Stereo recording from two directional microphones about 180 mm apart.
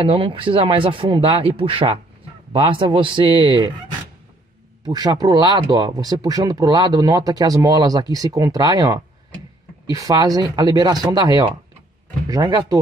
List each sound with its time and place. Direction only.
0.0 s speech: 30° right (ahead or behind)
4.8 s speech: 20° right (ahead or behind)